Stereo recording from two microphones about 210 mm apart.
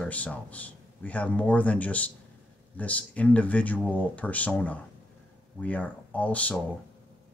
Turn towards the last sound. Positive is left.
turn(degrees=5)  # may be behind; listen again after turning